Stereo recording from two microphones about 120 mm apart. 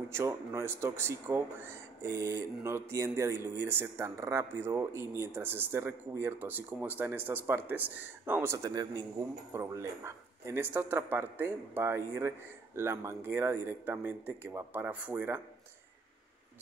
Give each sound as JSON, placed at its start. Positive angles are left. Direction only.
{"t": 0.1, "sound": "speech", "side_deg": -25}